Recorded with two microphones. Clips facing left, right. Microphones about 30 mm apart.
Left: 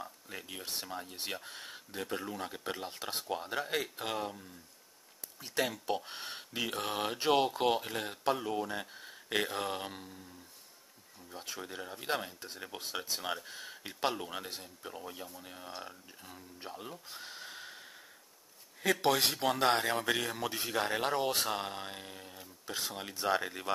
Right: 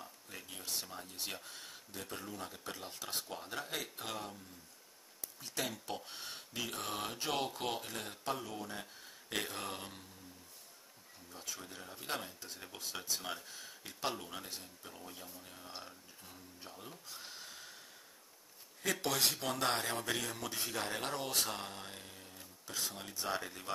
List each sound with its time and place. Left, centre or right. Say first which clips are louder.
0.0 s speech: left 6 dB; left
5.6 s speech: left 7 dB; left
11.2 s speech: left 5 dB; left
19.7 s speech: left 6 dB; centre